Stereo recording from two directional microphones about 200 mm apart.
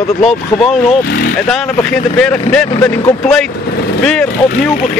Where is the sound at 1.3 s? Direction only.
Centre (ahead or behind).